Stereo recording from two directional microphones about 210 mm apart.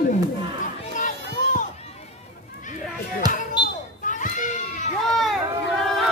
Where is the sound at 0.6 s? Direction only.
40° left (ahead or behind).